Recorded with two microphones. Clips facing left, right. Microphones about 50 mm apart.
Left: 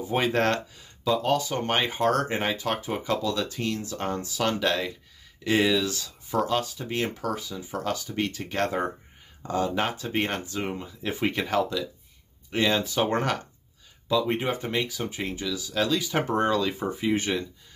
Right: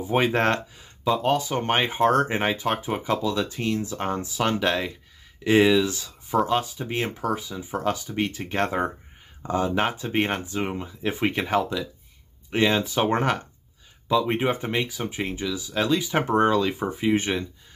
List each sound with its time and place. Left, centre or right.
0.1 s speech: right